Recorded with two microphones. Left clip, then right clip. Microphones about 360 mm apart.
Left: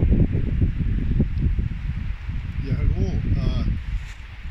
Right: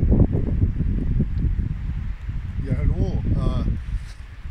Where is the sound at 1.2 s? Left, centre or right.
Left.